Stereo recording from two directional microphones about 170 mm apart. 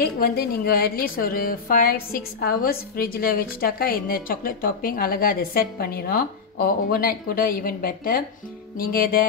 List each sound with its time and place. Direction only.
0.0 s a woman's voice: 65° left (ahead or behind)